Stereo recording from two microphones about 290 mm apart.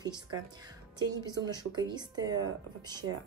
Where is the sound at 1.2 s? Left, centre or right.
Centre.